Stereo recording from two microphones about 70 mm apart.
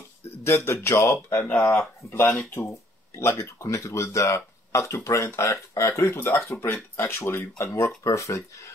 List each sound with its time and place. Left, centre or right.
0.5 s speech: left